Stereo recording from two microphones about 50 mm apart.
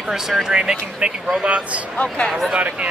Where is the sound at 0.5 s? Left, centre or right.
Centre.